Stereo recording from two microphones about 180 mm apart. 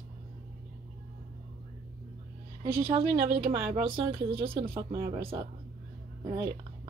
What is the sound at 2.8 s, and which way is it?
Speech, 35° right (ahead or behind).